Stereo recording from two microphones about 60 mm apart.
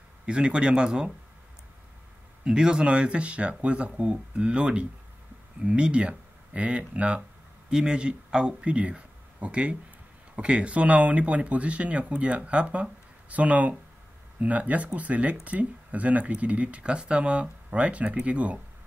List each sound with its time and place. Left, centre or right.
0.3 s speech: centre
2.4 s speech: centre